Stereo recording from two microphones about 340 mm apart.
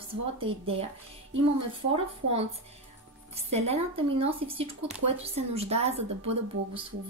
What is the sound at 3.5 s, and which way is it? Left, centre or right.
A woman's voice, centre.